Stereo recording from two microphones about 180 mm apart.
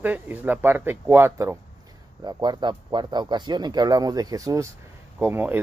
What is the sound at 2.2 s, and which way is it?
Speech, 25° right (ahead or behind).